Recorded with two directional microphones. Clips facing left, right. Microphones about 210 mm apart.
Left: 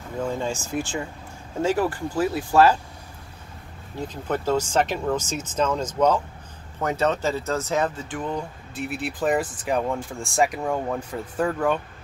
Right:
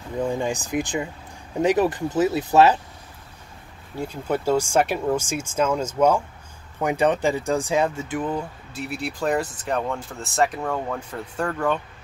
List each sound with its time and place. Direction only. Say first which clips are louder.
0.2 s speech: right 2 dB; 15° right (ahead or behind)
4.0 s speech: right 2 dB; 10° right (ahead or behind); by 11.8 s 10° left (ahead or behind)